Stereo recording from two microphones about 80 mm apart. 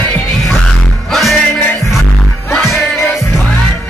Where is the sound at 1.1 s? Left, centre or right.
Centre.